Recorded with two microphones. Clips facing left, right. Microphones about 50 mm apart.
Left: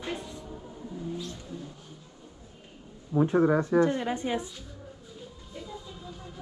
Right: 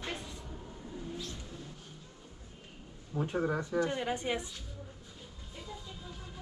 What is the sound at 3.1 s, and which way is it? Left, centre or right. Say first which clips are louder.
Speech: left 10 dB; left.